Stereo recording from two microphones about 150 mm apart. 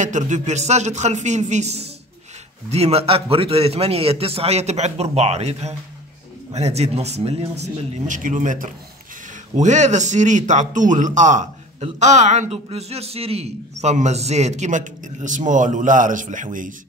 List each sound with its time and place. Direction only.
0.0 s a man's voice: 55° right (ahead or behind)